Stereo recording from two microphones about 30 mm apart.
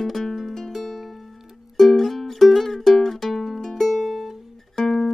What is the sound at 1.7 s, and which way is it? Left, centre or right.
Music, centre.